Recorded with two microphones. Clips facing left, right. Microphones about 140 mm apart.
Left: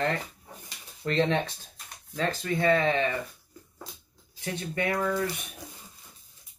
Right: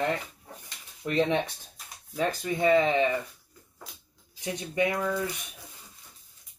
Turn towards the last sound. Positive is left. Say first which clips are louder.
# even
turn(degrees=-10)  # may be behind; listen again after turning